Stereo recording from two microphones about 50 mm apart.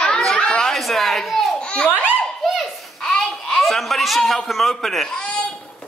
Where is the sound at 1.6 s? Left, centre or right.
Left.